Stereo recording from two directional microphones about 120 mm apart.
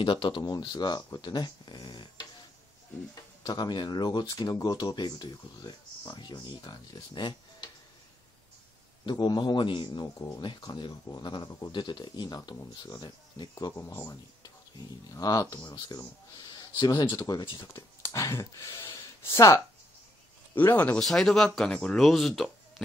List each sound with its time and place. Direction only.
0.0 s speech: 45° left (ahead or behind)
3.4 s speech: 40° left (ahead or behind)
9.0 s speech: 40° left (ahead or behind)
10.1 s speech: 25° left (ahead or behind)
10.4 s speech: 40° left (ahead or behind)
17.7 s speech: 25° left (ahead or behind); by 22.5 s centre (ahead or behind)